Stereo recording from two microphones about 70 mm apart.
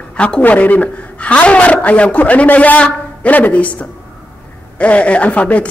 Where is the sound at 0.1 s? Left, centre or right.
Centre.